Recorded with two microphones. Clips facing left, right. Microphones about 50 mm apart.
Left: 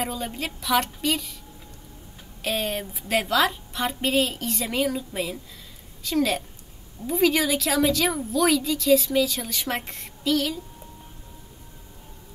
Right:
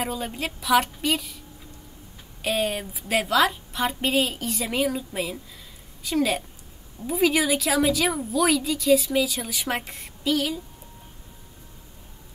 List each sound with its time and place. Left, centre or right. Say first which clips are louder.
0.0 s a woman's voice: right 1 dB; centre
2.4 s a woman's voice: right 2 dB; centre